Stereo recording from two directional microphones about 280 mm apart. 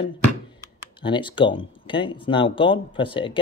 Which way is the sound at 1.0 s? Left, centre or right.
Centre.